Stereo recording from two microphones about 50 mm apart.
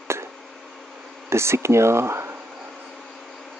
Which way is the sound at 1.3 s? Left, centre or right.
Right.